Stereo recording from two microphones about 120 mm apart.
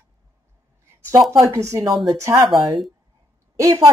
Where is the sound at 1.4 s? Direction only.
25° right (ahead or behind).